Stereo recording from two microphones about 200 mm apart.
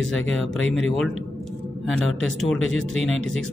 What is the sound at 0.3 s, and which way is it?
Speech, centre (ahead or behind).